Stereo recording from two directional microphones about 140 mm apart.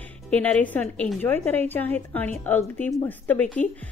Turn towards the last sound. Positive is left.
turn(degrees=15)  # may be behind; listen again after turning